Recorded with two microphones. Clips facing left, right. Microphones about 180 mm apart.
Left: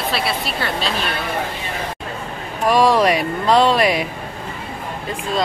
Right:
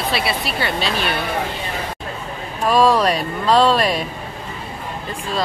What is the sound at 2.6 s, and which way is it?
Speech, 10° left (ahead or behind).